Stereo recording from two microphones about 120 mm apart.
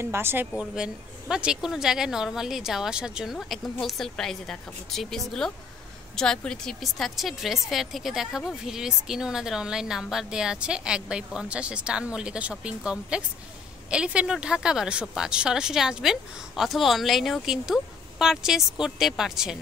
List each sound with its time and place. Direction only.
0.0 s speech: 20° right (ahead or behind)
0.6 s speech: 5° right (ahead or behind)